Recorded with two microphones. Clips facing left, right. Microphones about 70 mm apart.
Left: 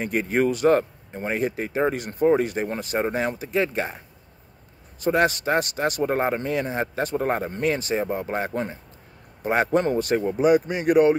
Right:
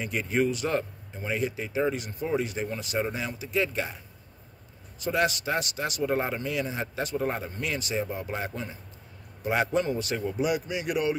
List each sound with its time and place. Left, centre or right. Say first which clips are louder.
0.0 s speech: left 5 dB; left
5.0 s speech: left 6 dB; left